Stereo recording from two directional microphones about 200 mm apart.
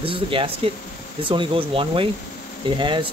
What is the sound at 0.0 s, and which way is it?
Speech, 25° right (ahead or behind).